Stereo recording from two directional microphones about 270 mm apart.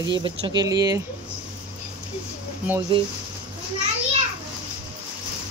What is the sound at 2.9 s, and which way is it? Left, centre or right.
Speech, centre.